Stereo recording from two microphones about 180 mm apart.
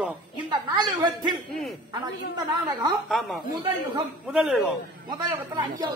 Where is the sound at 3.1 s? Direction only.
Centre (ahead or behind).